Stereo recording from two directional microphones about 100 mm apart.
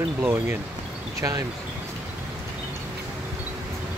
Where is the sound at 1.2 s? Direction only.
40° right (ahead or behind).